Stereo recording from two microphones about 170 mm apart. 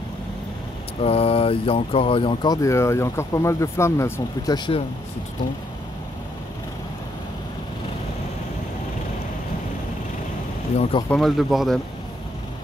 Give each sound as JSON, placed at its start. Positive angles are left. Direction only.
{"t": 1.0, "sound": "speech", "side_deg": 35}
{"t": 10.8, "sound": "speech", "side_deg": 30}
{"t": 11.1, "sound": "speech", "side_deg": 0}